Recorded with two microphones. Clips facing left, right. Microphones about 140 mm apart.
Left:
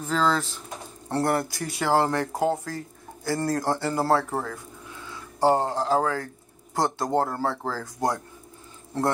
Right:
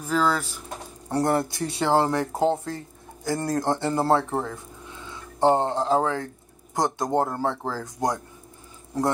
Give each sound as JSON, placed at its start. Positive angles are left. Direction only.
{"t": 0.1, "sound": "speech", "side_deg": -10}